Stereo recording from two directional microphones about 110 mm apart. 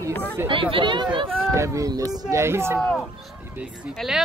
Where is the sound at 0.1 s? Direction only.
15° left (ahead or behind).